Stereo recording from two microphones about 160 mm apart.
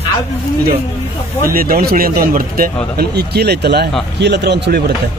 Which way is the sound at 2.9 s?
90° right.